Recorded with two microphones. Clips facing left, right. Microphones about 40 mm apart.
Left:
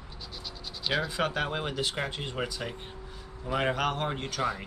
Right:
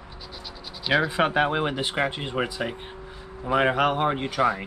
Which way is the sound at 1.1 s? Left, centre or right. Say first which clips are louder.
Right 8 dB; right.